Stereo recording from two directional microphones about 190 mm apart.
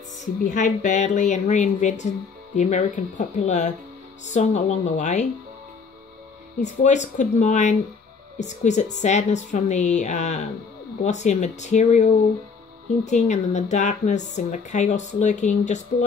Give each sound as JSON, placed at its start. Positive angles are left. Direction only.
{"t": 0.5, "sound": "speech", "side_deg": 40}
{"t": 6.6, "sound": "speech", "side_deg": 40}